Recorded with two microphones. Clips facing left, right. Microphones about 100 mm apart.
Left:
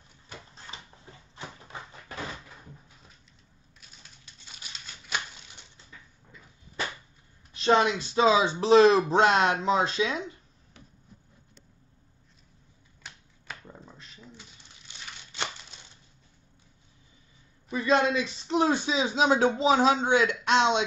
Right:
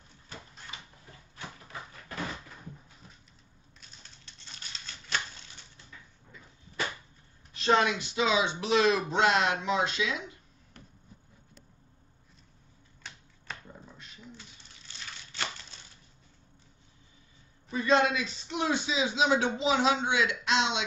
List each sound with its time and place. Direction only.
1.3 s a sound: 25° left (ahead or behind)
4.3 s crumpling: 10° left (ahead or behind)
7.5 s a woman's voice: 25° left (ahead or behind)
14.9 s tearing: 20° left (ahead or behind)
18.0 s speech: 30° left (ahead or behind)